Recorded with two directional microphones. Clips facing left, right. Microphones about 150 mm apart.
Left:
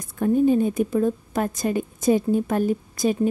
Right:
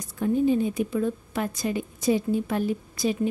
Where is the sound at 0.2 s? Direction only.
50° left (ahead or behind).